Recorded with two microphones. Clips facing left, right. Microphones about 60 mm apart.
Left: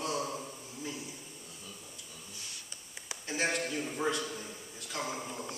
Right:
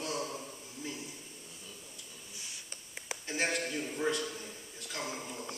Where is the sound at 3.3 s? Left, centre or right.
Left.